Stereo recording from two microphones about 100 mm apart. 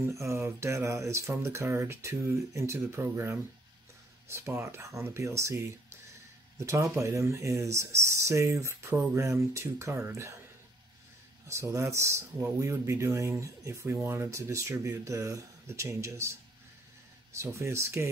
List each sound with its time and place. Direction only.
0.0 s speech: 30° right (ahead or behind)
11.4 s speech: 30° right (ahead or behind)
17.4 s speech: 30° right (ahead or behind)